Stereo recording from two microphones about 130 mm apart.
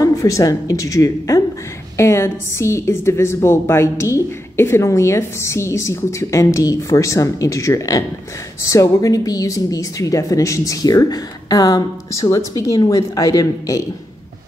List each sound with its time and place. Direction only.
0.0 s a woman's voice: 25° left (ahead or behind)